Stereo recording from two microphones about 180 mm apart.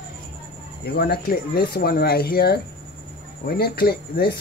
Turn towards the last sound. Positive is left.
turn(degrees=60)  # may be behind; listen again after turning